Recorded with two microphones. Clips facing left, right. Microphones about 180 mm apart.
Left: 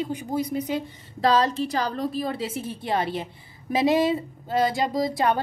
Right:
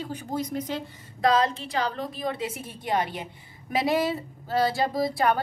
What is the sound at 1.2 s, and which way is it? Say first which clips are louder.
A woman's voice: left 2 dB; 35° left (ahead or behind).